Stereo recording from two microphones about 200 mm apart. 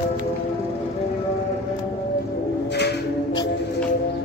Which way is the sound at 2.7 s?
55° left (ahead or behind).